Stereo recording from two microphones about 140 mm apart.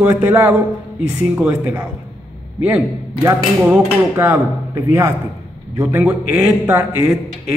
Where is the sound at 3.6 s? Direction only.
15° right (ahead or behind).